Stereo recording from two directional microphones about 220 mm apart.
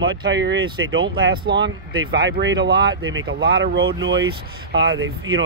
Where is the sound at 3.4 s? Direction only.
45° right (ahead or behind).